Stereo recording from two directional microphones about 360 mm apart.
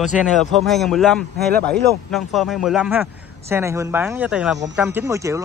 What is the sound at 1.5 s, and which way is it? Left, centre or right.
Speech, right.